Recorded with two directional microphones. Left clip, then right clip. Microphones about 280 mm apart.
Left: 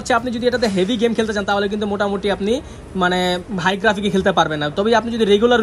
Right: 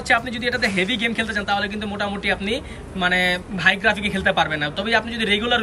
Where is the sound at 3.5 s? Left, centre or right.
Centre.